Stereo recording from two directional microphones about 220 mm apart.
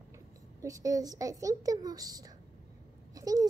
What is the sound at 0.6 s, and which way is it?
A woman's voice, 15° right (ahead or behind).